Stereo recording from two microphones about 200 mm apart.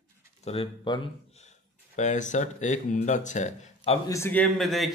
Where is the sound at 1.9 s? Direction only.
35° left (ahead or behind).